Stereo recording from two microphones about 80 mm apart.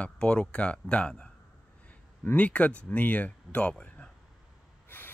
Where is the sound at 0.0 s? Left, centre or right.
Centre.